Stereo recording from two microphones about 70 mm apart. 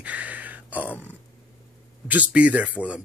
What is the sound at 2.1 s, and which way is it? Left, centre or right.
Speech, right.